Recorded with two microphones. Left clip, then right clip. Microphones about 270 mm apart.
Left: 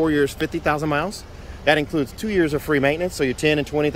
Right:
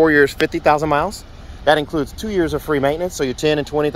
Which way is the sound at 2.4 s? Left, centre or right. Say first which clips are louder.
Right 2 dB; centre.